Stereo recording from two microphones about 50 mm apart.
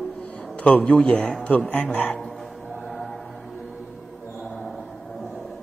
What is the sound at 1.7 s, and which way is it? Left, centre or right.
Speech, left.